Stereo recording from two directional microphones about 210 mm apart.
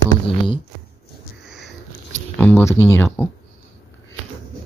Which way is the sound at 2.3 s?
10° left (ahead or behind).